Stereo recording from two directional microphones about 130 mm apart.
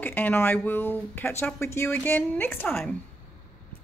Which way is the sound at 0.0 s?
15° left (ahead or behind).